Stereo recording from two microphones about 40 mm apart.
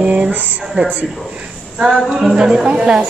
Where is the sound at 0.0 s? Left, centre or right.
Right.